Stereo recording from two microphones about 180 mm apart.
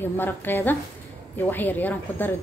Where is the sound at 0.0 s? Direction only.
10° left (ahead or behind).